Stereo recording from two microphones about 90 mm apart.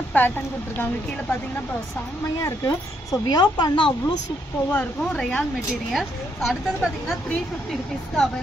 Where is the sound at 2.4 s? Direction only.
35° left (ahead or behind).